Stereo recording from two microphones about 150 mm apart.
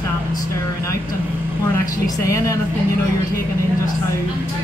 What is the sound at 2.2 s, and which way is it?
Speech, 20° left (ahead or behind).